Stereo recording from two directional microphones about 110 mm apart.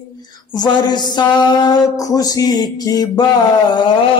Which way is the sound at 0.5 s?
40° left (ahead or behind).